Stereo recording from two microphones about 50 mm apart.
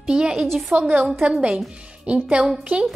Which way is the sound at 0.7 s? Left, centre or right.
Right.